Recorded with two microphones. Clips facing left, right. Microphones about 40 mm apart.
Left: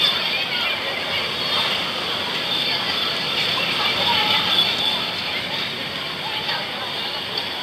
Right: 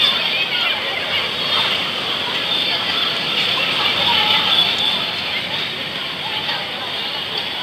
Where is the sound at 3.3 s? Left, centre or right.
Right.